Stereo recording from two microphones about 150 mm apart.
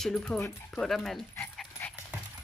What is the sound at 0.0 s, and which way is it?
Speech, 5° left (ahead or behind).